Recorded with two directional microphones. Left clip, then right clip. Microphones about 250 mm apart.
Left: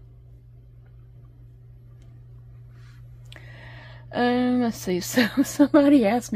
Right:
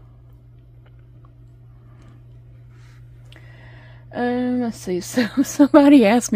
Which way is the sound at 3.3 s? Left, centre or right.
Centre.